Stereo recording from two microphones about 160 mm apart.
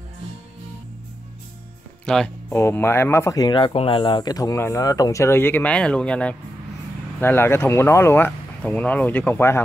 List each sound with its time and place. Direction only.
2.0 s speech: 5° left (ahead or behind)
2.5 s speech: 15° left (ahead or behind)